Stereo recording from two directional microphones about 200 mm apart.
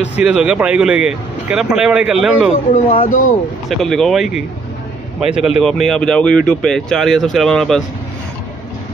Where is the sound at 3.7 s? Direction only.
Centre (ahead or behind).